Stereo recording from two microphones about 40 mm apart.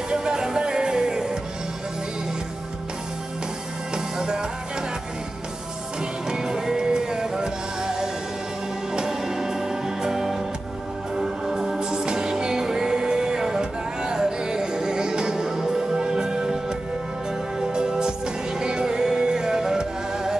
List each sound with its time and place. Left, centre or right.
0.1 s music: centre
3.9 s music: centre
6.2 s music: centre